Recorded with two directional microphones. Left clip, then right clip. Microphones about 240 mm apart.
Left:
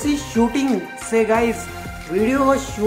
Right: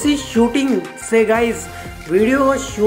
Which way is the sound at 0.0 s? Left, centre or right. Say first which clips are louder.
Right 4 dB; centre.